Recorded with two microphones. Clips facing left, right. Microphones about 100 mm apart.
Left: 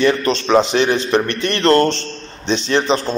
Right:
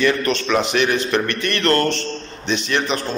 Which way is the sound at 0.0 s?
25° left (ahead or behind).